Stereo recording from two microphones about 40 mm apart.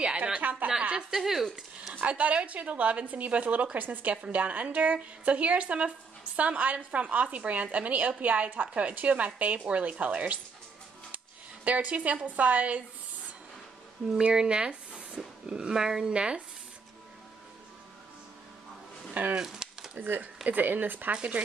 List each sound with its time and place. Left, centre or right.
0.4 s a sound: right
0.9 s a woman's voice: centre
2.0 s a woman's voice: right
11.6 s a woman's voice: right
14.3 s speech: centre
16.1 s speech: right
19.3 s a sound: centre
20.0 s speech: right
21.1 s a woman's voice: right